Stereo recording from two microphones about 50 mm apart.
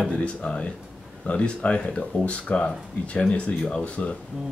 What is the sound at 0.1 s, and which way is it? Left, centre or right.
Speech, left.